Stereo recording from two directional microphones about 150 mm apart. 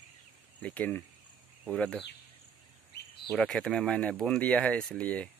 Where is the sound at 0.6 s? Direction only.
10° left (ahead or behind).